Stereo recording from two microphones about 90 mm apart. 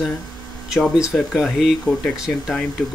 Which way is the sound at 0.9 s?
5° right (ahead or behind).